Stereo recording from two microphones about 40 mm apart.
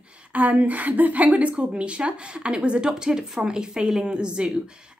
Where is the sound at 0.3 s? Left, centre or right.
Right.